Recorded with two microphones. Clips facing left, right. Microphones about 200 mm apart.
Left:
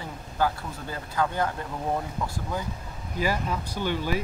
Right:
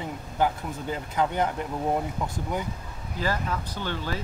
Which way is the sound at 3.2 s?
10° left (ahead or behind).